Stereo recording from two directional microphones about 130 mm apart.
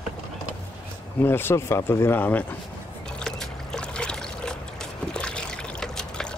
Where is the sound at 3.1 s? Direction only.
5° left (ahead or behind).